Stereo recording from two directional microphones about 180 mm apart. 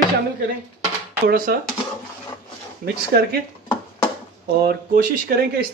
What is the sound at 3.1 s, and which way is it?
Speech, 60° right (ahead or behind).